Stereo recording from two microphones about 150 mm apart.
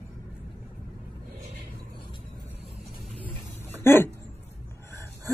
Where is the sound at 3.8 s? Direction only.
15° left (ahead or behind).